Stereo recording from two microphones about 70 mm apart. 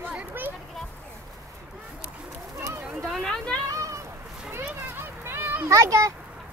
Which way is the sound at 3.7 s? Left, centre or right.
Right.